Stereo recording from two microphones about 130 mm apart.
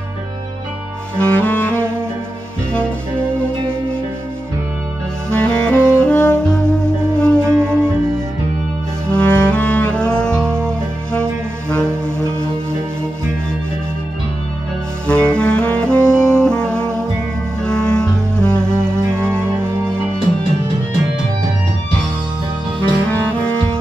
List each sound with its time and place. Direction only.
1.2 s music: 10° left (ahead or behind)
5.3 s saxophone: 10° left (ahead or behind)
7.2 s music: 10° left (ahead or behind)
7.5 s music: 20° right (ahead or behind)
9.1 s music: 10° left (ahead or behind)
15.0 s saxophone: 10° left (ahead or behind)
17.6 s music: 5° left (ahead or behind)
19.1 s music: 20° right (ahead or behind)